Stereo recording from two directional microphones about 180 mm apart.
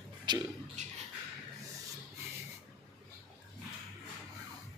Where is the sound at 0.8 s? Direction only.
40° right (ahead or behind).